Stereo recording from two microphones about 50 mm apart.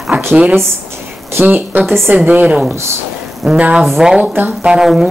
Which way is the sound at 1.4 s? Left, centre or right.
Right.